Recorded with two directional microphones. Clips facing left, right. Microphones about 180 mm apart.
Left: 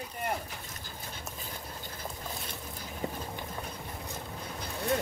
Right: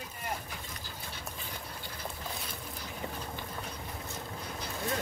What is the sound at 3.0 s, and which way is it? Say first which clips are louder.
Vehicle: left 5 dB; 40° left (ahead or behind).